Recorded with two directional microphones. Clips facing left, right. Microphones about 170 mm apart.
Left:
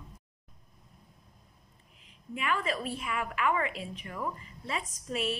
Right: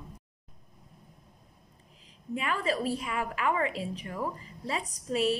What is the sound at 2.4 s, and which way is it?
A woman's voice, 30° right (ahead or behind).